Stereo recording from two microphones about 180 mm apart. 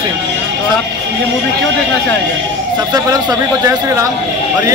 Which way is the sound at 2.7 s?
20° right (ahead or behind).